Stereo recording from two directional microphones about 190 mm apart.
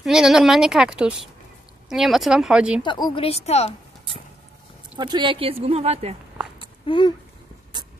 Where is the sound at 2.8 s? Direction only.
25° left (ahead or behind).